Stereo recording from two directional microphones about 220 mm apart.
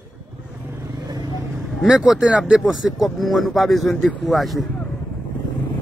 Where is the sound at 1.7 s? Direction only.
Centre (ahead or behind).